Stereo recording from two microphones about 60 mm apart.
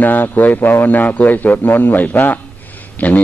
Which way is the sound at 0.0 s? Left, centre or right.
Left.